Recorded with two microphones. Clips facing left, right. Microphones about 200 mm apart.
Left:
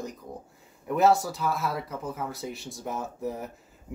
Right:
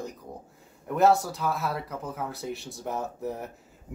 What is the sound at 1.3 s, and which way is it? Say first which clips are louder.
Speech: even; centre (ahead or behind).